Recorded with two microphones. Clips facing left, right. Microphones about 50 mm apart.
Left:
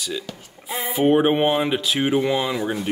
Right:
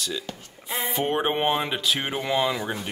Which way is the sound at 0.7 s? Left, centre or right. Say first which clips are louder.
Left 7 dB; centre.